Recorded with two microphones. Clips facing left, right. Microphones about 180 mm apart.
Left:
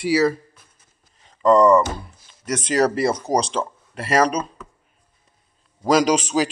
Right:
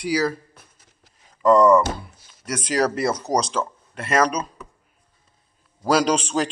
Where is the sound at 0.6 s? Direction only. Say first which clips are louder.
Right 4 dB; 75° right (ahead or behind).